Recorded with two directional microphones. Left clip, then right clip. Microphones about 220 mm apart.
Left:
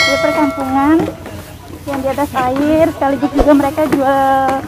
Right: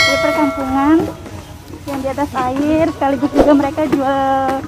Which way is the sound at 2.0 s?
10° right (ahead or behind).